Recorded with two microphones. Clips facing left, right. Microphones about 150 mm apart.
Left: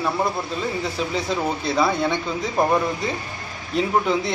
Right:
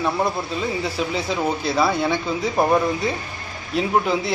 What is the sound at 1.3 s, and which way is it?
Speech, 5° right (ahead or behind).